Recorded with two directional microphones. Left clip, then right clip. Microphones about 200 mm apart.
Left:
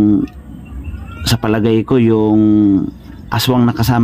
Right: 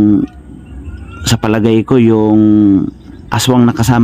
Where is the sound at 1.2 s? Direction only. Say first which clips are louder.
Right 2 dB; 15° right (ahead or behind).